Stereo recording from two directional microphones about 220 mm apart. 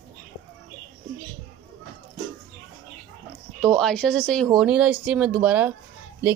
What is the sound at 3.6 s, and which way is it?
Speech, 5° left (ahead or behind).